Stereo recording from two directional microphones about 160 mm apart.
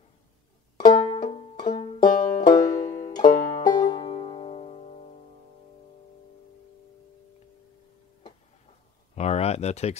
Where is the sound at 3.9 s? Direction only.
40° left (ahead or behind).